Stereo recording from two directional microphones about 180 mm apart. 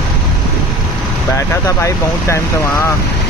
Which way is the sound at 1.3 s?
15° left (ahead or behind).